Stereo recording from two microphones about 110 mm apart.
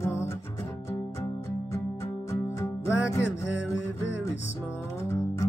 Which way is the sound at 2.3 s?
25° left (ahead or behind).